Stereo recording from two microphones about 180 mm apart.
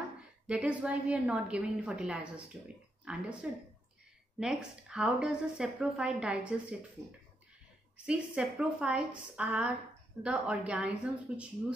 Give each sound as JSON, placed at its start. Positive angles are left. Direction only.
{"t": 0.5, "sound": "a woman's voice", "side_deg": -5}
{"t": 4.4, "sound": "a woman's voice", "side_deg": -5}
{"t": 8.0, "sound": "a woman's voice", "side_deg": -5}